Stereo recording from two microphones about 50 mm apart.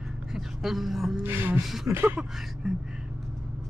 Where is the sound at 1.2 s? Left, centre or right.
Right.